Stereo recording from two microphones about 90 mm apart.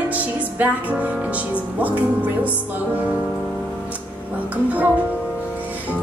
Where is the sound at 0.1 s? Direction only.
20° right (ahead or behind).